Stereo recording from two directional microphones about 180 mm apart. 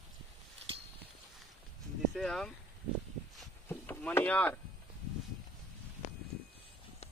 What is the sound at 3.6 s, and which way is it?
Rowboat, 10° left (ahead or behind).